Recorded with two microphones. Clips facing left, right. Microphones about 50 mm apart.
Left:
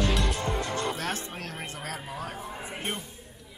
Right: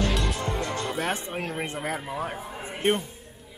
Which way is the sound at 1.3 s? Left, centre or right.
Right.